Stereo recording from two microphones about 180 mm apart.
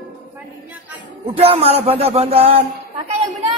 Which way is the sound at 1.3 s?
35° right (ahead or behind).